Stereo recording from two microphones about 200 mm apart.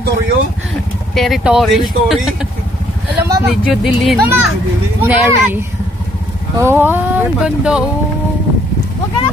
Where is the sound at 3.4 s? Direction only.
Centre (ahead or behind).